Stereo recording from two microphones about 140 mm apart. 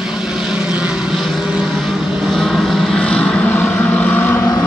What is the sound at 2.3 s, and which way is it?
Vehicle, centre (ahead or behind).